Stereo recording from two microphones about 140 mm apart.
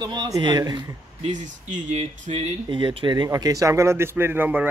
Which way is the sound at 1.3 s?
60° right (ahead or behind).